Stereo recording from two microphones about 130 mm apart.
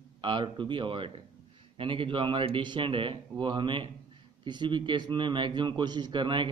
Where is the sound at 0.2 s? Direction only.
40° right (ahead or behind).